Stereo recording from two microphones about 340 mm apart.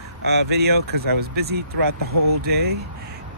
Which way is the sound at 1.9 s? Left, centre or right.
Right.